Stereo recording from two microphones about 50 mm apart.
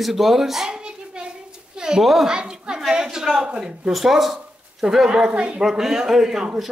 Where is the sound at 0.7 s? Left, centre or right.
Centre.